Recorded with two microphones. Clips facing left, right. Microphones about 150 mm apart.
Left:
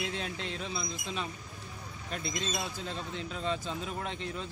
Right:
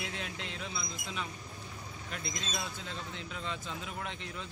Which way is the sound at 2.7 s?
35° left (ahead or behind).